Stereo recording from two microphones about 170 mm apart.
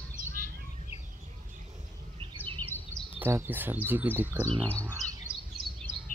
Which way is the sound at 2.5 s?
10° left (ahead or behind).